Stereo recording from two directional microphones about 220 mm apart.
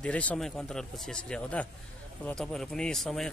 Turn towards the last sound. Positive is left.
turn(degrees=0)  # may be behind; listen again after turning